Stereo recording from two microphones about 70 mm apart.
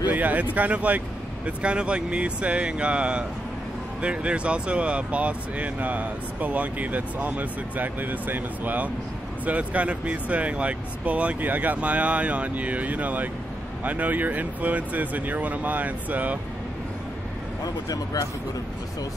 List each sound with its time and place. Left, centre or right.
0.0 s speech: right
17.8 s speech: left